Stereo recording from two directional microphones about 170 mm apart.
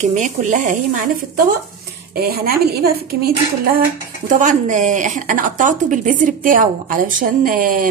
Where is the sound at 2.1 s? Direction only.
65° right (ahead or behind).